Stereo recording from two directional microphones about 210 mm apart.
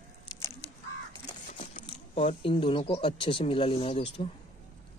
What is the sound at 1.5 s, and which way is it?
Speech, 30° left (ahead or behind).